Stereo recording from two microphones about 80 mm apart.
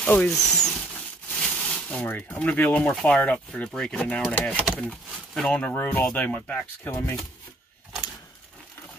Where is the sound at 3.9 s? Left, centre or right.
Centre.